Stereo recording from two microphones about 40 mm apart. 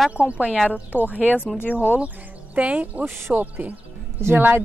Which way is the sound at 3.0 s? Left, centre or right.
Right.